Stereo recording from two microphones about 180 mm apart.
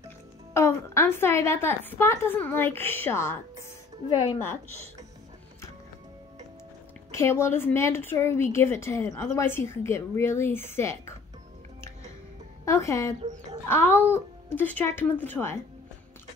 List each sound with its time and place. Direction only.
0.5 s a woman's voice: 15° left (ahead or behind)
7.1 s a woman's voice: 15° left (ahead or behind)
12.6 s a woman's voice: 15° left (ahead or behind)